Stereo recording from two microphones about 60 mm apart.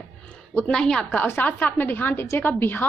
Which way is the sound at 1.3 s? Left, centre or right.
Left.